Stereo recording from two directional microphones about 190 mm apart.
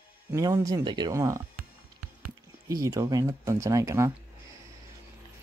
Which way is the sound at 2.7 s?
15° right (ahead or behind).